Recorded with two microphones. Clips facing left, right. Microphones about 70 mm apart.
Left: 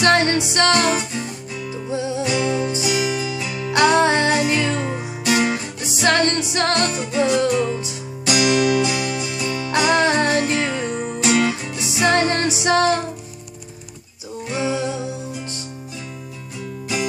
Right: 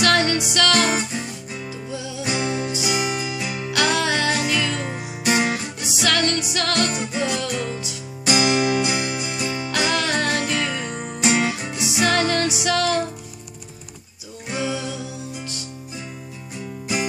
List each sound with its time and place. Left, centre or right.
0.0 s music: left
0.8 s music: right
1.9 s music: left
2.2 s music: right
3.7 s music: left
4.8 s music: right
5.5 s music: left
6.9 s music: centre
7.2 s music: left
8.3 s music: right
9.7 s music: left
11.2 s music: right
11.8 s music: left
14.6 s music: left